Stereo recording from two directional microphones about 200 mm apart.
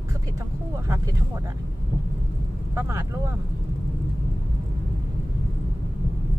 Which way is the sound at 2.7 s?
15° right (ahead or behind).